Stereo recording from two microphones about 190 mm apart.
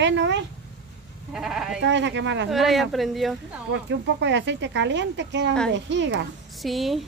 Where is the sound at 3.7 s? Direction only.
70° right (ahead or behind).